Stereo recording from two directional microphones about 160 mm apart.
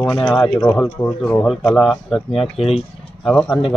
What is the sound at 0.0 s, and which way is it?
Speech, 30° left (ahead or behind).